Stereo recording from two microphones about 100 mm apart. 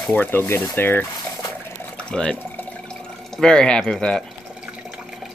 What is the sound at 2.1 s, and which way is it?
Speech, 5° left (ahead or behind).